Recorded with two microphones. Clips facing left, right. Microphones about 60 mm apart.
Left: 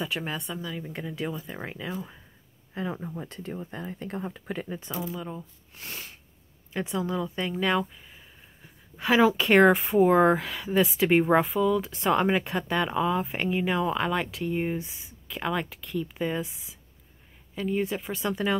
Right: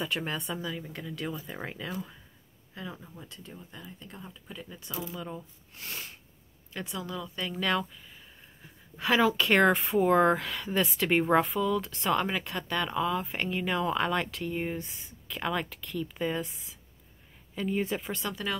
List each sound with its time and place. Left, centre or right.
0.0 s speech: centre
0.8 s speech: centre
1.3 s speech: centre
2.7 s speech: left
4.6 s speech: left
5.1 s speech: centre
6.7 s speech: left
7.5 s speech: centre